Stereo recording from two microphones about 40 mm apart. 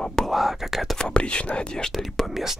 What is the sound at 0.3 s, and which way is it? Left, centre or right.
Speech, centre.